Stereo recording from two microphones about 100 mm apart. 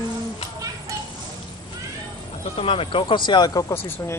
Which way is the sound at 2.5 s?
65° left (ahead or behind).